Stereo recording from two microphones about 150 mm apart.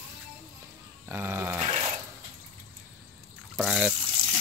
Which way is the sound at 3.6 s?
5° right (ahead or behind).